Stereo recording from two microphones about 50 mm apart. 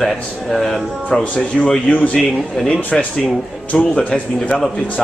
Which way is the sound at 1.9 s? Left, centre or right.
Left.